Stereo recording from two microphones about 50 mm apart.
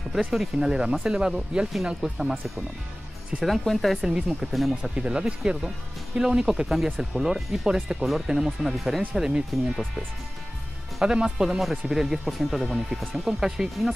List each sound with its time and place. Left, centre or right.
0.2 s speech: centre
1.7 s speech: centre
3.4 s speech: centre
4.0 s speech: centre
4.9 s speech: centre
11.0 s speech: centre